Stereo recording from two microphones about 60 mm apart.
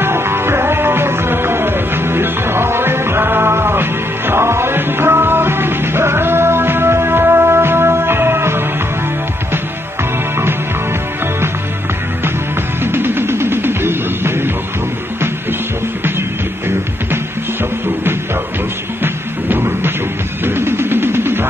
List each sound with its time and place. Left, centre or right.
0.0 s music: right
12.8 s music: right
20.4 s music: right